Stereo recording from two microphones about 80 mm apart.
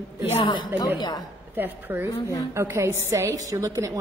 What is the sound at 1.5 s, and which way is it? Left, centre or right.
A woman's voice, right.